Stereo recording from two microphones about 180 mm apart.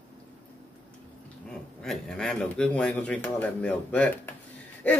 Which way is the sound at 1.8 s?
5° left (ahead or behind).